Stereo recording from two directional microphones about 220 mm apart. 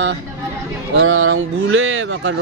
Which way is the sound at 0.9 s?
65° right (ahead or behind).